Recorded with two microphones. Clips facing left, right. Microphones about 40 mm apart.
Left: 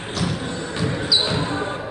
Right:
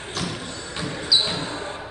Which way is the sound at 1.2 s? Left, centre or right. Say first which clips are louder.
Left 5 dB; left.